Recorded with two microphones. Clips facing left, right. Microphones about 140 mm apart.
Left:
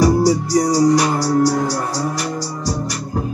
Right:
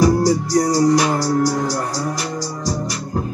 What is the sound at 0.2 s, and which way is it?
Music, 5° left (ahead or behind).